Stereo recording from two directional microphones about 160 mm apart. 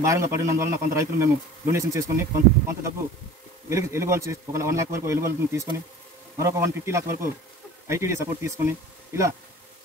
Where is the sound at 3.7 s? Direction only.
15° right (ahead or behind).